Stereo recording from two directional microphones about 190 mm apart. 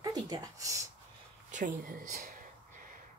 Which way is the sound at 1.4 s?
45° right (ahead or behind).